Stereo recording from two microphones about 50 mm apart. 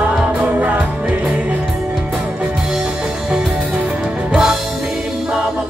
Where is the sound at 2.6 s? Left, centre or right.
Centre.